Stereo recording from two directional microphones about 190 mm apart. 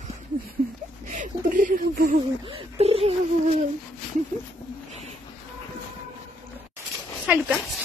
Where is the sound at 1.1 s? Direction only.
40° right (ahead or behind).